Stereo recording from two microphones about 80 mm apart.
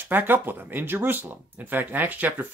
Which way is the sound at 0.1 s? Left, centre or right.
Right.